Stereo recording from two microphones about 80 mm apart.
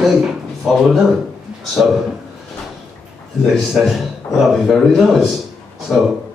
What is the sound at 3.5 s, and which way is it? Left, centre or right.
Speech, centre.